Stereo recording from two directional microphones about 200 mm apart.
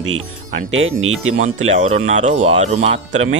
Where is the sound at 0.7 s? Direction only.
80° right.